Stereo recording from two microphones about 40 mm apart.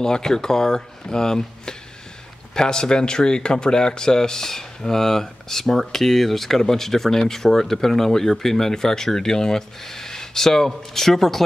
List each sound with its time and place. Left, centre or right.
0.0 s speech: centre